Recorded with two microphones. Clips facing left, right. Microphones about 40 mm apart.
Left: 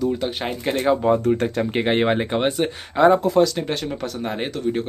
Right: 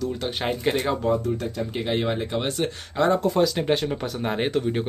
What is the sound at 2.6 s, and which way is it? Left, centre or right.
Speech, centre.